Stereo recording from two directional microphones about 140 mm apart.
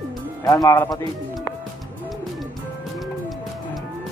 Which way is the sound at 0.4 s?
25° left (ahead or behind).